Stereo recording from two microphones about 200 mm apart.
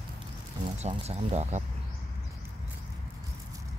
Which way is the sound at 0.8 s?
35° right (ahead or behind).